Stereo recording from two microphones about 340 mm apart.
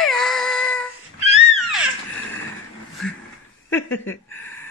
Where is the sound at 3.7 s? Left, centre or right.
Centre.